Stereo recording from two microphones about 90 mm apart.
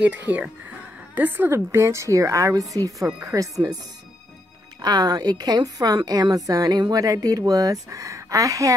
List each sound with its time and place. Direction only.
0.0 s a woman's voice: 15° right (ahead or behind); by 3.7 s 40° right (ahead or behind)
4.8 s a woman's voice: 50° right (ahead or behind)